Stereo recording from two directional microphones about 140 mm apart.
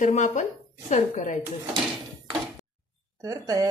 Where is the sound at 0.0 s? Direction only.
60° left (ahead or behind).